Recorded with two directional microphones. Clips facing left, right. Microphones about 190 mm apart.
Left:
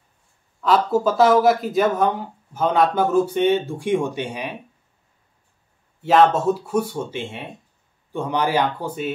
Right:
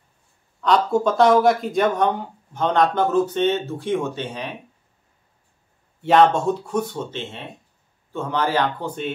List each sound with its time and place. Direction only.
0.6 s speech: 5° left (ahead or behind)
5.9 s speech: centre (ahead or behind)